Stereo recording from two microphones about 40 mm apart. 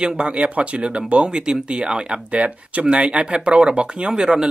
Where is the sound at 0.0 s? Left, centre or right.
Right.